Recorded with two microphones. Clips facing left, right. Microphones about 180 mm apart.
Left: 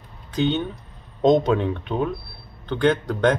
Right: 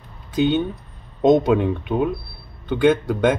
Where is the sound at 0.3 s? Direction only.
10° right (ahead or behind).